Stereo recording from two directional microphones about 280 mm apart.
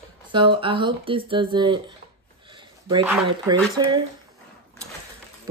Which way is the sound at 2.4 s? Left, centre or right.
Centre.